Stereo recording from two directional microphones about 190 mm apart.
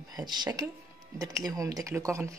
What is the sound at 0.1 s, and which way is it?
Speech, 20° right (ahead or behind).